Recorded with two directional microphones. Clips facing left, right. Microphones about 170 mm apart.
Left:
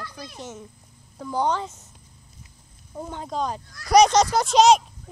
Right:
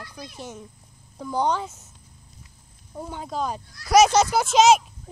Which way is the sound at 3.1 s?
5° right (ahead or behind).